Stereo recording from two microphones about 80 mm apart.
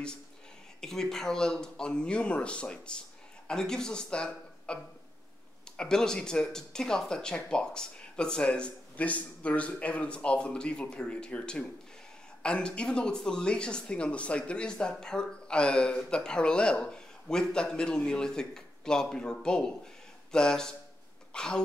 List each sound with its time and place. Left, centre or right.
0.7 s speech: centre
5.8 s speech: centre